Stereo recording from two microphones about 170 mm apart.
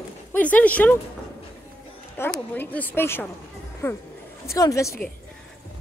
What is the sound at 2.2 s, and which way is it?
A woman's voice, 15° left (ahead or behind).